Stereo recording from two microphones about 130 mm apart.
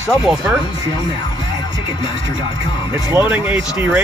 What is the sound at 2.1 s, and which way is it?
Music, 40° left (ahead or behind).